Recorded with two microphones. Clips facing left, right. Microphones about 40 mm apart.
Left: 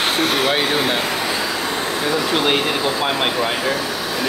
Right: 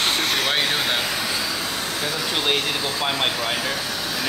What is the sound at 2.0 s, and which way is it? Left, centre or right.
Speech, centre.